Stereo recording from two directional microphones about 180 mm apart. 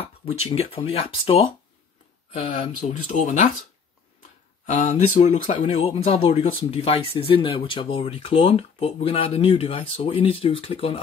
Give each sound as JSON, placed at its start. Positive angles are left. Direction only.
{"t": 0.0, "sound": "speech", "side_deg": 35}
{"t": 3.1, "sound": "speech", "side_deg": 45}
{"t": 4.6, "sound": "speech", "side_deg": 40}